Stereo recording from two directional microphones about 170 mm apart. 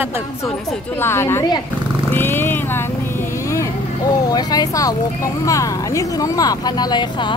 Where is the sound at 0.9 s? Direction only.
15° left (ahead or behind).